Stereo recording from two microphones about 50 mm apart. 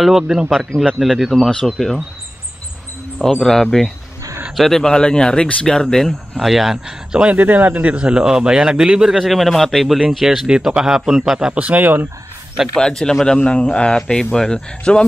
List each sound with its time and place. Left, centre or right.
0.0 s speech: centre
0.5 s speech: centre
1.5 s speech: centre
3.4 s speech: centre
6.5 s speech: centre
7.3 s a man's voice: right; by 9.2 s centre
9.2 s speech: centre
10.2 s speech: centre
11.5 s speech: right
12.7 s a man's voice: centre